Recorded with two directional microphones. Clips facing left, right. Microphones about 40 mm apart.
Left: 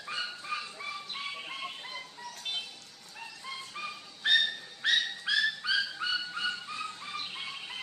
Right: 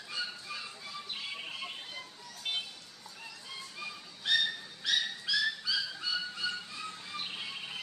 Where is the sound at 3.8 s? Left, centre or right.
Left.